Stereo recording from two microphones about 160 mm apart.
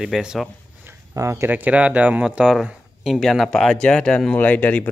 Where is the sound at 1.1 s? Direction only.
20° right (ahead or behind).